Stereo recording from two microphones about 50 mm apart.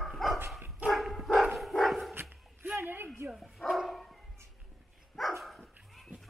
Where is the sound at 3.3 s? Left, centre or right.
Centre.